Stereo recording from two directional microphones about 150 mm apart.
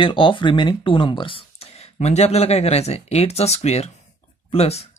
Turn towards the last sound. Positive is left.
turn(degrees=45)  # may be behind; listen again after turning